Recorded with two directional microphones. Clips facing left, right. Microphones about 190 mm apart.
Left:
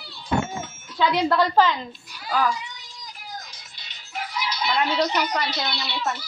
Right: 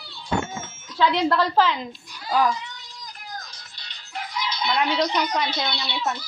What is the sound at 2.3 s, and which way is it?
Speech, 20° right (ahead or behind).